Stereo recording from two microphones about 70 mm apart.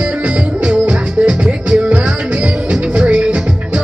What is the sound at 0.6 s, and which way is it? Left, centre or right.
Music, centre.